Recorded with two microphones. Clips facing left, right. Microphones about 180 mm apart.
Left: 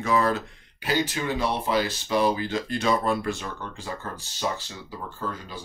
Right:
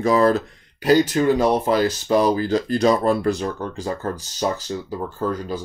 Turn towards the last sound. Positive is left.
turn(degrees=-40)  # may be behind; listen again after turning